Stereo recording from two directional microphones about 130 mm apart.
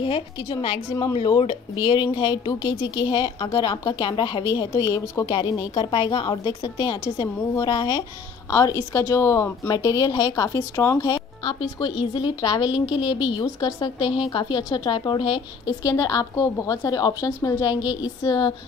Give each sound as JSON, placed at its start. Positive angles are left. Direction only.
{"t": 0.0, "sound": "a woman's voice", "side_deg": 40}
{"t": 11.8, "sound": "speech", "side_deg": 35}